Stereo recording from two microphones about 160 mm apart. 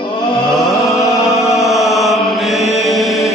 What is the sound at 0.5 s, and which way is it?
Music, centre (ahead or behind).